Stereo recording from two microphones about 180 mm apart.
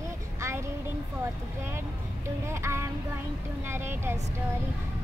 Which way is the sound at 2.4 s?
15° right (ahead or behind).